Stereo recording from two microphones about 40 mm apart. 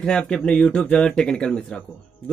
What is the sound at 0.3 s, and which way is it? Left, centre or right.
Speech, left.